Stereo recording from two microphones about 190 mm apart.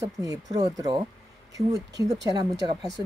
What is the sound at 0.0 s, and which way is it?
A woman's voice, 20° right (ahead or behind).